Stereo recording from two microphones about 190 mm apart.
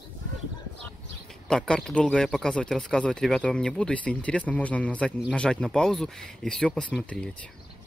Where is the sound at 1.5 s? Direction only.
5° left (ahead or behind).